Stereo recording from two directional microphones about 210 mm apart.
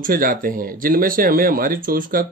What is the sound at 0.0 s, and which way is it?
Speech, 40° right (ahead or behind).